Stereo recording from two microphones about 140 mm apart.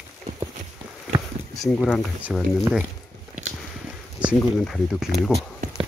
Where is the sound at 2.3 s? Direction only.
5° right (ahead or behind).